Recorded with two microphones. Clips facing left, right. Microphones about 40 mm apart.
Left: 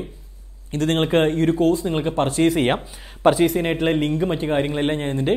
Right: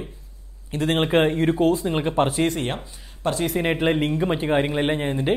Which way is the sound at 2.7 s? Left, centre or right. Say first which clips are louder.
Left 5 dB; centre.